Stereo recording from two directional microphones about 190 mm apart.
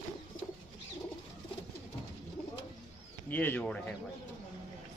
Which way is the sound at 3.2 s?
10° left (ahead or behind).